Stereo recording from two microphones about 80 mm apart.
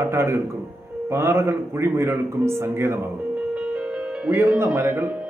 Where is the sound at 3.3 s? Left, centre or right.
Centre.